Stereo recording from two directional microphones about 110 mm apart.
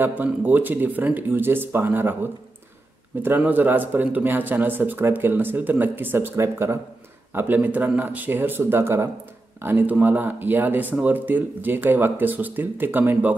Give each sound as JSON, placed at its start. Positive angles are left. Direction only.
{"t": 0.0, "sound": "speech", "side_deg": -15}
{"t": 3.2, "sound": "speech", "side_deg": -15}